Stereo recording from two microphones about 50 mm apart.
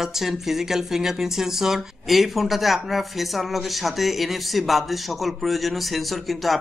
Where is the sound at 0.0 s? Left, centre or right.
Centre.